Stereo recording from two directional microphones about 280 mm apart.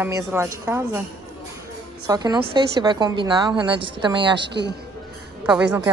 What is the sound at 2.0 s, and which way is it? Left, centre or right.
A woman's voice, centre.